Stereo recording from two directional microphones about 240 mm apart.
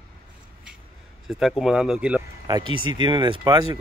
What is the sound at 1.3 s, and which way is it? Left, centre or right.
Speech, centre.